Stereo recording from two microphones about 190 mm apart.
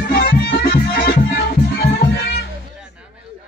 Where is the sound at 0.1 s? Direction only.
55° left (ahead or behind).